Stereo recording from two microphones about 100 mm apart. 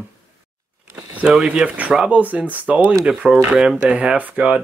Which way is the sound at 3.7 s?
15° right (ahead or behind).